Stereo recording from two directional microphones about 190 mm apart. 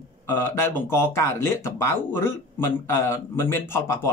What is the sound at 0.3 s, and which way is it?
Speech, 10° left (ahead or behind).